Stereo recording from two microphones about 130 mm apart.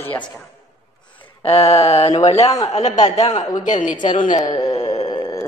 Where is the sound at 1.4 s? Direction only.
50° left (ahead or behind); by 4.0 s 80° left.